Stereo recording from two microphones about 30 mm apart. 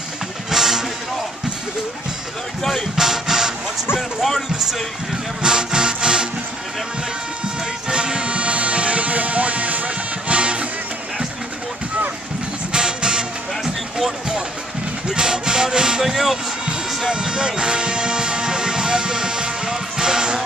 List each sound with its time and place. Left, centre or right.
0.5 s music: centre
3.0 s music: centre
5.4 s music: right
7.9 s music: right
12.7 s music: right
15.0 s music: right
16.0 s speech: centre
17.0 s music: right